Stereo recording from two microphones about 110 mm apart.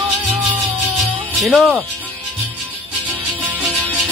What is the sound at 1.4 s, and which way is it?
Speech, 5° right (ahead or behind).